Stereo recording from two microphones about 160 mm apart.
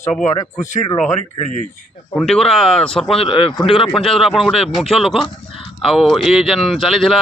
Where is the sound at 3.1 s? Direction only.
35° left (ahead or behind).